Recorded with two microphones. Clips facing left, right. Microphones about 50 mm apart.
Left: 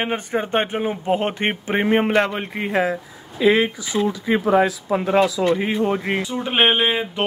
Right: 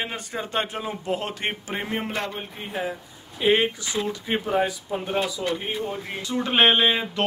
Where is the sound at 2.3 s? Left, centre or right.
Left.